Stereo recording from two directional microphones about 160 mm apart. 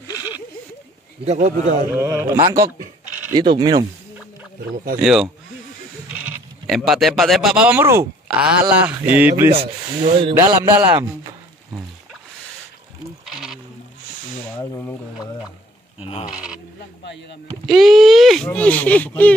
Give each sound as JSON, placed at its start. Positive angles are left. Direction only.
{"t": 1.2, "sound": "a man's voice", "side_deg": -45}
{"t": 2.0, "sound": "speech", "side_deg": -15}
{"t": 4.9, "sound": "speech", "side_deg": 0}
{"t": 13.3, "sound": "bleat", "side_deg": 0}
{"t": 14.6, "sound": "a sound", "side_deg": 20}
{"t": 16.0, "sound": "speech", "side_deg": 40}
{"t": 17.0, "sound": "a sound", "side_deg": 90}
{"t": 17.6, "sound": "speech", "side_deg": 0}